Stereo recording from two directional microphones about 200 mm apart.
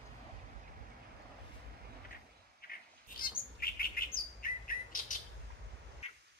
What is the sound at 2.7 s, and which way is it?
Chirp, 50° left (ahead or behind).